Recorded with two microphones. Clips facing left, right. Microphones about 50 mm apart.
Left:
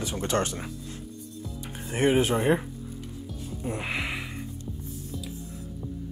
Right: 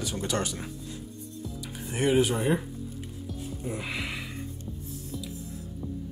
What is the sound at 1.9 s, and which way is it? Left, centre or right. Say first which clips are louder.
Speech: left 1 dB; left.